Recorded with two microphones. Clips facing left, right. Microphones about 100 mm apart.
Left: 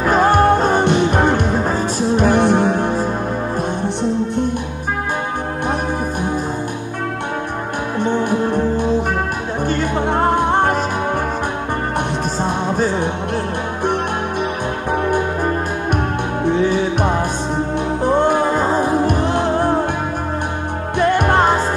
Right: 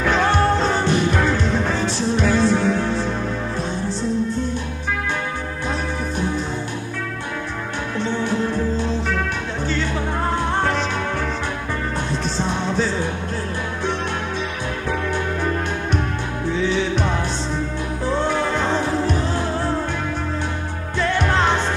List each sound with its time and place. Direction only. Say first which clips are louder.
0.0 s music: left 5 dB; 45° left (ahead or behind)
8.0 s music: left 5 dB; 50° left (ahead or behind)
12.4 s music: left 3 dB; 50° left (ahead or behind)
14.9 s music: left 6 dB; 50° left (ahead or behind)
16.4 s music: left 4 dB; 55° left (ahead or behind)
18.9 s music: left 5 dB; 55° left (ahead or behind)
21.0 s music: left 5 dB; 50° left (ahead or behind)